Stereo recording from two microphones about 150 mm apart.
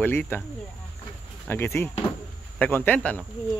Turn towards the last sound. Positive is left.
turn(degrees=10)  # may be behind; listen again after turning